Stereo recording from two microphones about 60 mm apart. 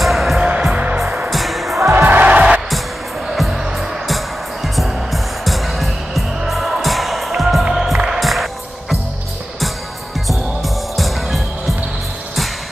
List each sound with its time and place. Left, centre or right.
0.0 s music: centre
0.4 s music: centre
1.3 s music: centre
1.8 s music: right
2.0 s music: right
3.3 s music: centre
4.7 s music: centre
10.2 s music: centre